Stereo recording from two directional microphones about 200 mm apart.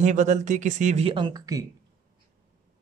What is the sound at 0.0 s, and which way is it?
Speech, 35° right (ahead or behind).